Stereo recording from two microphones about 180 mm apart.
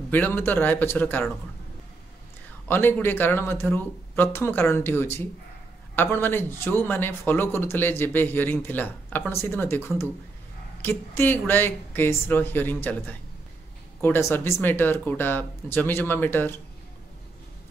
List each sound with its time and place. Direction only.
0.1 s speech: 10° left (ahead or behind)
2.7 s speech: 10° left (ahead or behind)
14.0 s speech: 10° left (ahead or behind)